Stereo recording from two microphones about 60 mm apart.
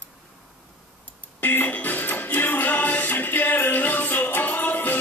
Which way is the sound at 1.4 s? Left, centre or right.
Left.